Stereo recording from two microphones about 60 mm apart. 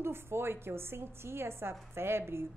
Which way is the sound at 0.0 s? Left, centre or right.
Right.